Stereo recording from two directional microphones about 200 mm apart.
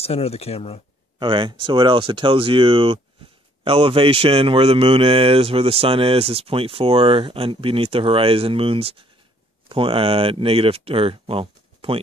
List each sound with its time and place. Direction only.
0.0 s speech: 30° left (ahead or behind)
1.2 s a man's voice: 25° right (ahead or behind)